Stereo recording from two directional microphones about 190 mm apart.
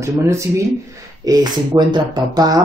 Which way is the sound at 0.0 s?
15° right (ahead or behind).